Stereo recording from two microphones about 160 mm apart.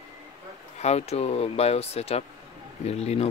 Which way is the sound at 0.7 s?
45° left (ahead or behind).